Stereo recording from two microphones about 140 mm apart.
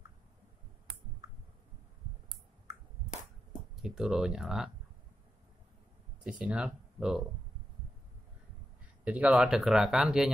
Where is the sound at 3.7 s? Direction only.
5° right (ahead or behind).